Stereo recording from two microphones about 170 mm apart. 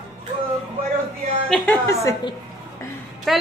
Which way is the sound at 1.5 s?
5° left (ahead or behind).